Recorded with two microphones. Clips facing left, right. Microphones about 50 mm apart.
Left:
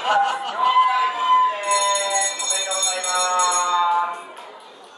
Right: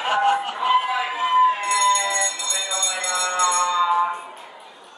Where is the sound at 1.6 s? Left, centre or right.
Centre.